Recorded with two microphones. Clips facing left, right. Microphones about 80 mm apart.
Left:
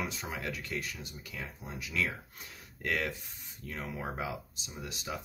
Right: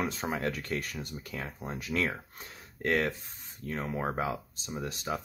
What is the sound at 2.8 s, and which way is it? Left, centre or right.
Speech, right.